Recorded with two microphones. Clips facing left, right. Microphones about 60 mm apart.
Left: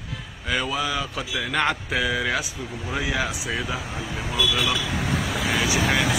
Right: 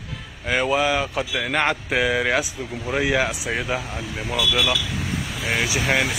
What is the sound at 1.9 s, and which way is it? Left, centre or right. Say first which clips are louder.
Speech: right 3 dB; right.